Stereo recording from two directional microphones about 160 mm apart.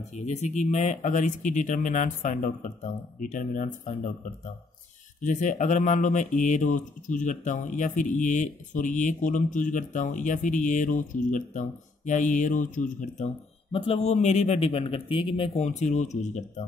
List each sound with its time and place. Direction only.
0.1 s speech: 45° left (ahead or behind)
5.2 s speech: 50° left (ahead or behind)
13.7 s speech: 35° left (ahead or behind)